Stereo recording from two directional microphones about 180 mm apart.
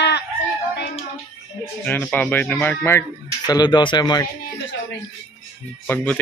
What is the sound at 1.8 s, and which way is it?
Speech, 10° left (ahead or behind).